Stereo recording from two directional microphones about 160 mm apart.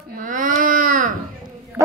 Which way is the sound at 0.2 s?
60° right (ahead or behind).